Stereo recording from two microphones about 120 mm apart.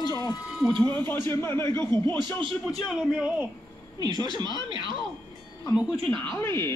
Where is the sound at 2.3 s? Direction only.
45° right (ahead or behind).